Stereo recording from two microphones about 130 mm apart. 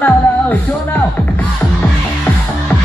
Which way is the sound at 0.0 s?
15° left (ahead or behind).